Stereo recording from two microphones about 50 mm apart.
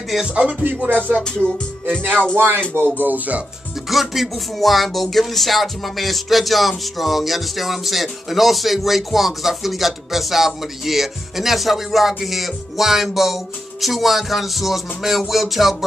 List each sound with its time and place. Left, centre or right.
0.3 s music: right
0.8 s speech: right
1.2 s music: centre
2.3 s speech: right
3.0 s speech: right
3.9 s speech: centre